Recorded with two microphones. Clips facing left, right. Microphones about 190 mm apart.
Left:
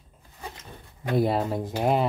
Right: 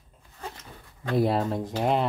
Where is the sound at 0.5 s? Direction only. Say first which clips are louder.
Left 2 dB; 20° left (ahead or behind).